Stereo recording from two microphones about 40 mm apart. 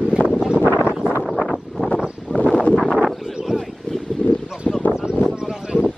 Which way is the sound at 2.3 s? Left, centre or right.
Left.